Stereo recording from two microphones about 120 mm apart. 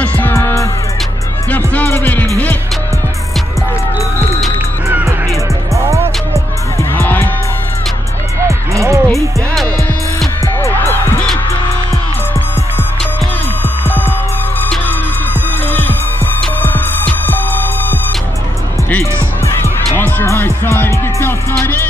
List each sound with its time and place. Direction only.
0.0 s music: 15° left (ahead or behind)
1.7 s music: 15° left (ahead or behind)
4.8 s music: 25° right (ahead or behind)
6.8 s music: 20° left (ahead or behind)
8.5 s music: 25° right (ahead or behind)
10.4 s music: 20° left (ahead or behind)
13.8 s music: 20° left (ahead or behind)
20.0 s music: 15° left (ahead or behind)